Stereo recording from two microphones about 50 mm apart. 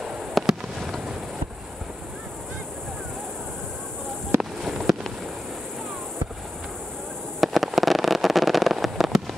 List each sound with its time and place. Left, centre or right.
0.0 s fireworks: centre
4.4 s a sound: centre
7.3 s fireworks: centre